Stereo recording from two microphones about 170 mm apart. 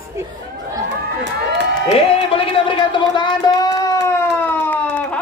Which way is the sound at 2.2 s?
30° left (ahead or behind).